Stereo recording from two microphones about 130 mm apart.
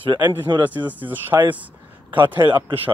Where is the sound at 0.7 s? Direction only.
15° right (ahead or behind).